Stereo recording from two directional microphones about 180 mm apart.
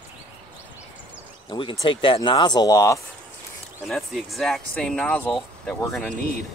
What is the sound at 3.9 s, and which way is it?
Speech, centre (ahead or behind).